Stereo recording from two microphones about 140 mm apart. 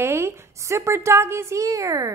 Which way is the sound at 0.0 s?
20° right (ahead or behind).